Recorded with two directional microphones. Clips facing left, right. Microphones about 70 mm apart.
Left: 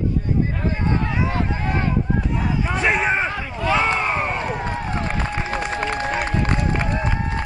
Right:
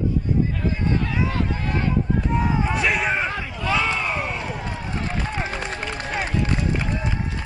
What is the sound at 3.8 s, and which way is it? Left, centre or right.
Crowd, left.